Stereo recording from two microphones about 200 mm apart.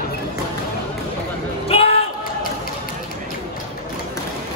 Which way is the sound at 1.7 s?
30° left (ahead or behind).